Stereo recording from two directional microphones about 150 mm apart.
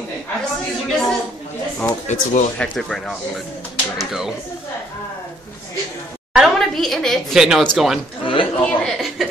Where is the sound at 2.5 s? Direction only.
10° left (ahead or behind).